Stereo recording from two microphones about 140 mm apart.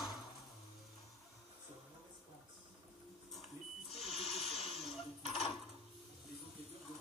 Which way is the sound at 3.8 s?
50° left (ahead or behind).